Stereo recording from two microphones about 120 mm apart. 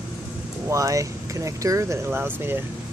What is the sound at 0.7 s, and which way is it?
Speech, 25° right (ahead or behind).